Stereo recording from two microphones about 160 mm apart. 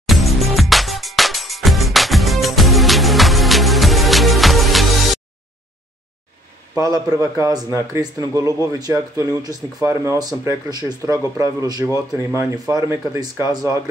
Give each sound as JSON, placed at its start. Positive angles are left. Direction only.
{"t": 0.0, "sound": "music", "side_deg": 0}
{"t": 6.9, "sound": "a man's voice", "side_deg": -20}